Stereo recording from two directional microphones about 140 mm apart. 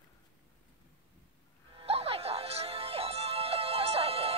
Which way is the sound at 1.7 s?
45° right (ahead or behind).